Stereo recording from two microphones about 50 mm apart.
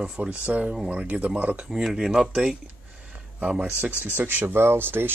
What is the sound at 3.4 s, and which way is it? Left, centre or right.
Speech, right.